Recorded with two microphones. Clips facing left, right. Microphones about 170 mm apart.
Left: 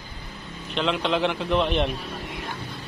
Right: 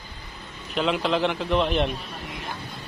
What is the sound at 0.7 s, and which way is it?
A man's voice, 5° right (ahead or behind).